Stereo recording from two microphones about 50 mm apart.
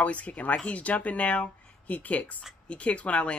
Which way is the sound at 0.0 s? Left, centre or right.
Left.